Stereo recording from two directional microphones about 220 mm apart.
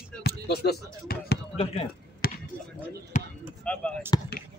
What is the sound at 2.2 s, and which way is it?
Basketball bounce, 45° left (ahead or behind).